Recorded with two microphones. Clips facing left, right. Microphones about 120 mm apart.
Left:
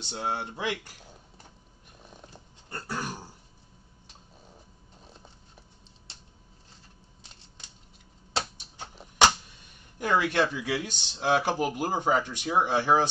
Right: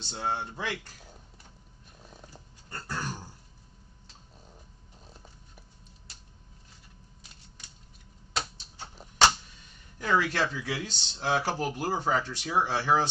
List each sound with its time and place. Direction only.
0.0 s speech: 15° left (ahead or behind)
2.3 s dog: 15° left (ahead or behind)
6.1 s a sound: 30° left (ahead or behind)
9.9 s speech: 15° left (ahead or behind)